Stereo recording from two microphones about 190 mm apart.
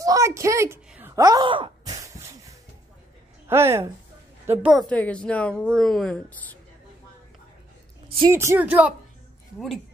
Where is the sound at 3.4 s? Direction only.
15° right (ahead or behind).